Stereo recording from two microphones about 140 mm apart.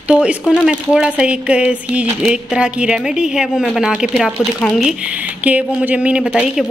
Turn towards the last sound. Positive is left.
turn(degrees=-5)  # may be behind; listen again after turning